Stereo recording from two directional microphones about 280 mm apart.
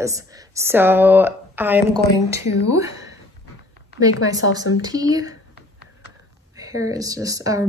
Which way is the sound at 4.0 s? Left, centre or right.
Left.